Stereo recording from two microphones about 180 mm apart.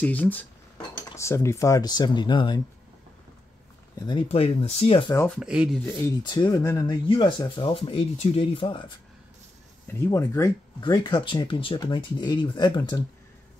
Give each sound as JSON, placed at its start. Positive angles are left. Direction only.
{"t": 0.0, "sound": "cutlery", "side_deg": 10}
{"t": 4.1, "sound": "speech", "side_deg": 30}
{"t": 5.1, "sound": "cutlery", "side_deg": 10}
{"t": 5.4, "sound": "speech", "side_deg": -5}
{"t": 5.9, "sound": "speech", "side_deg": 20}
{"t": 9.8, "sound": "speech", "side_deg": 15}